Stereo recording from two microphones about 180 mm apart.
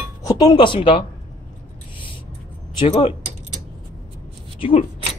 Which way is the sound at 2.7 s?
30° left (ahead or behind).